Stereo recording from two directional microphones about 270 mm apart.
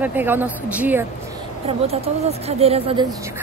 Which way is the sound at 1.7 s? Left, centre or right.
Right.